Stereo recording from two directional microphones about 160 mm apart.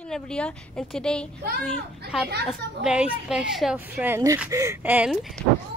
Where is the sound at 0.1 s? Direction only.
5° left (ahead or behind); by 5.1 s 10° right (ahead or behind).